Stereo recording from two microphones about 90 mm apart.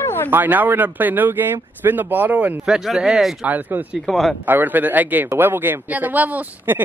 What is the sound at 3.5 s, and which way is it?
Speech, 20° right (ahead or behind).